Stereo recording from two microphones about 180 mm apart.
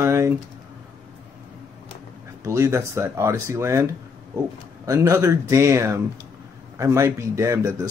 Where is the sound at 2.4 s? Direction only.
15° right (ahead or behind).